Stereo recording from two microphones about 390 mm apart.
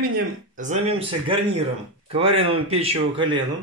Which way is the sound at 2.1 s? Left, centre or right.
Centre.